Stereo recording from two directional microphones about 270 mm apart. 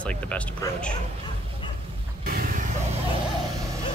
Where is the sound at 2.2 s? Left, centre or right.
Right.